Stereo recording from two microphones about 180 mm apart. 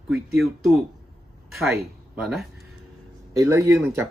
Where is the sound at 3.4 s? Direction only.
15° right (ahead or behind).